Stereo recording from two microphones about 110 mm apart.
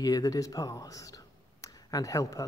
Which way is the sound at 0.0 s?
35° left (ahead or behind).